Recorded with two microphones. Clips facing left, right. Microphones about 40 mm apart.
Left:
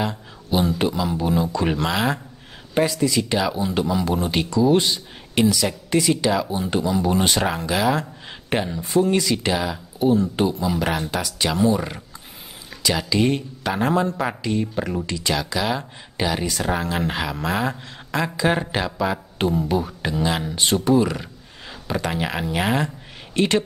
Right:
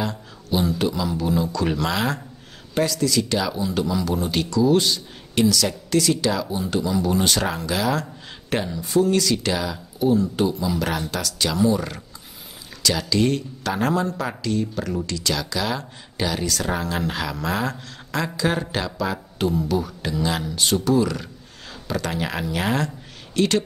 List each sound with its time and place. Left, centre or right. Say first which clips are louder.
0.0 s speech: left 2 dB; centre
1.9 s a man's voice: left 2 dB; centre